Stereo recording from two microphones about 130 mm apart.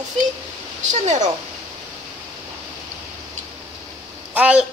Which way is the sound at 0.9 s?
65° right (ahead or behind).